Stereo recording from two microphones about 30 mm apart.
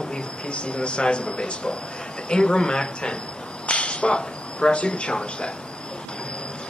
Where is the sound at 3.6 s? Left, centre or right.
Left.